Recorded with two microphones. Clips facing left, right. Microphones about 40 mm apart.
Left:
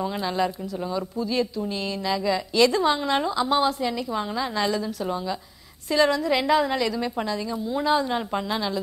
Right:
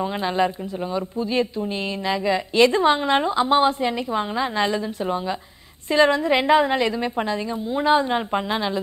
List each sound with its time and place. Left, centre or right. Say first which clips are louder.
0.0 s a woman's voice: right 3 dB; right